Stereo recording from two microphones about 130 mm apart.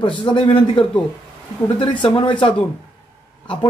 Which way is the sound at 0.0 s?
40° left (ahead or behind).